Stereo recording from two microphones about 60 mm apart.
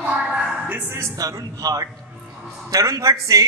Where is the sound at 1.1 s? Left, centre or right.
Right.